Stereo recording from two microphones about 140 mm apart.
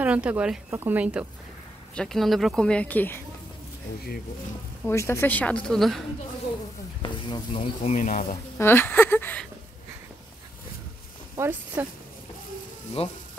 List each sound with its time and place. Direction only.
0.0 s speech: 10° right (ahead or behind)
2.0 s speech: centre (ahead or behind)
4.8 s speech: 20° left (ahead or behind); by 6.0 s centre (ahead or behind)
7.0 s speech: 35° left (ahead or behind); by 8.4 s 65° left (ahead or behind)
8.5 s speech: 15° left (ahead or behind)
11.3 s speech: 15° right (ahead or behind)
13.0 s speech: 45° left (ahead or behind)